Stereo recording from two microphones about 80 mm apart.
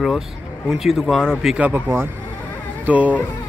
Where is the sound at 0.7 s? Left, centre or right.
Centre.